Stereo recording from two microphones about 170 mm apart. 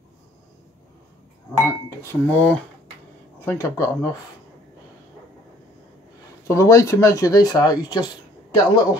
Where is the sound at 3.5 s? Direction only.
15° left (ahead or behind).